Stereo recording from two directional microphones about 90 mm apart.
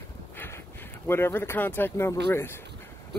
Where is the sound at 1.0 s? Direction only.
25° left (ahead or behind).